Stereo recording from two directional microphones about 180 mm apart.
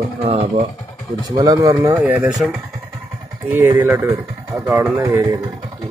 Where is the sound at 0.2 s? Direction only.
35° right (ahead or behind).